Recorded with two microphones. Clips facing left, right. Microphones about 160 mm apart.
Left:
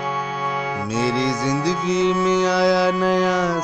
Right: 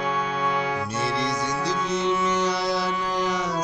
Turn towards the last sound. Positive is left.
turn(degrees=90)